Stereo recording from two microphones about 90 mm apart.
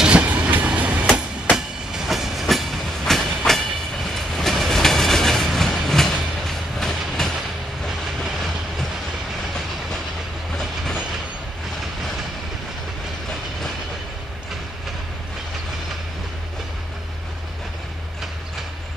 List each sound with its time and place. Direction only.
0.0 s train: 15° right (ahead or behind)
1.9 s train: centre (ahead or behind)